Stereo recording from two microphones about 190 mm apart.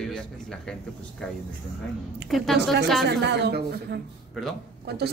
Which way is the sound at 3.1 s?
65° right (ahead or behind).